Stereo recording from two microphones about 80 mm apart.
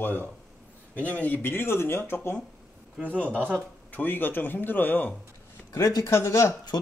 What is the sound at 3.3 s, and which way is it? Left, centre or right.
Speech, centre.